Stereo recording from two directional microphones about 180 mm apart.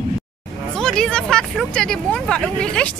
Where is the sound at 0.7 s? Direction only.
5° left (ahead or behind).